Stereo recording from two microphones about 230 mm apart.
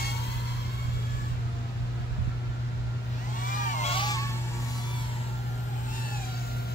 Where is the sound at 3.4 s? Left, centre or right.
Left; by 4.3 s centre.